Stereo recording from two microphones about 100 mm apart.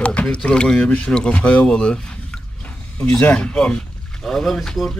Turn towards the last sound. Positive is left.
turn(degrees=5)  # may be behind; listen again after turning